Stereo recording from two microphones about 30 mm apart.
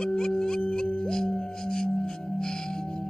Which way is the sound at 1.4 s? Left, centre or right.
Left.